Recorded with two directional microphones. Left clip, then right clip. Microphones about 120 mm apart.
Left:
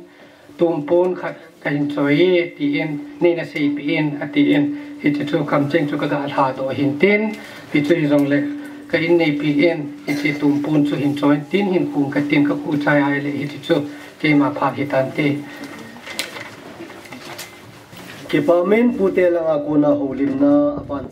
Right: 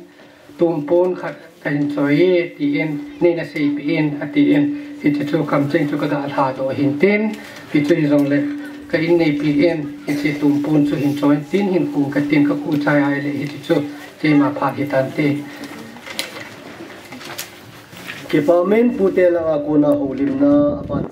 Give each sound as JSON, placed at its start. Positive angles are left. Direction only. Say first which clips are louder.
{"t": 0.6, "sound": "speech", "louder": "right 1 dB", "side_deg": 25}
{"t": 18.4, "sound": "a man's voice", "louder": "right 1 dB", "side_deg": 35}